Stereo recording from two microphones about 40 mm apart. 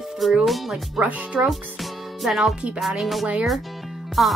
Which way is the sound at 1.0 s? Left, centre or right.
Right.